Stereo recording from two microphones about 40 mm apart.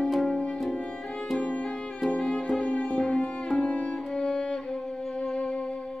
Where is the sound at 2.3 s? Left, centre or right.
Left.